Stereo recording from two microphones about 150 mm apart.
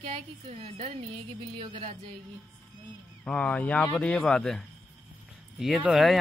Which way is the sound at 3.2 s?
5° left (ahead or behind).